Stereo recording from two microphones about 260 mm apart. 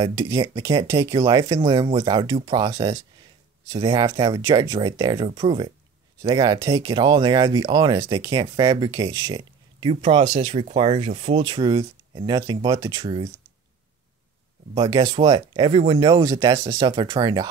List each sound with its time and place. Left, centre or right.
0.0 s speech: centre
14.7 s speech: centre